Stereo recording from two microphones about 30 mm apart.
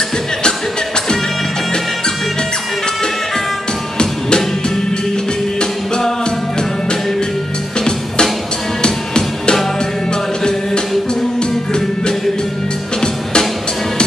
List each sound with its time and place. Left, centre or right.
5.6 s music: left
8.8 s drum: left